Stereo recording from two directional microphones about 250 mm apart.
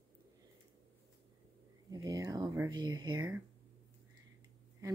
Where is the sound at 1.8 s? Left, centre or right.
Centre.